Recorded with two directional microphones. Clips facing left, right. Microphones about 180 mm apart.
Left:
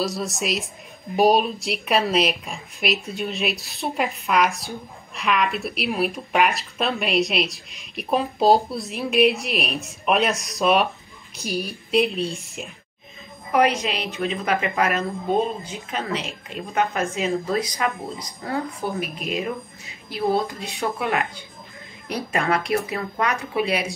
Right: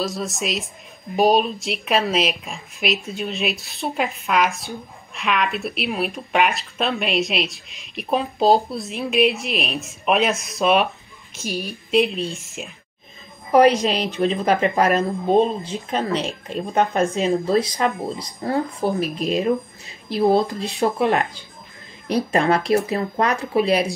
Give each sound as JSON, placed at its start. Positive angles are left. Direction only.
{"t": 0.0, "sound": "speech", "side_deg": 0}
{"t": 13.5, "sound": "speech", "side_deg": -35}